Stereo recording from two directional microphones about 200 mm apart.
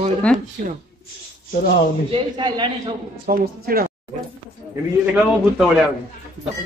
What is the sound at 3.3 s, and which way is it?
Speech, 45° right (ahead or behind).